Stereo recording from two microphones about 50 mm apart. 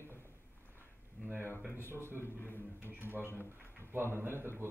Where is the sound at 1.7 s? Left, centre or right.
Right.